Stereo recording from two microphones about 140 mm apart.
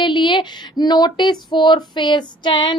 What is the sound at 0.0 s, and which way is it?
A woman's voice, 35° left (ahead or behind).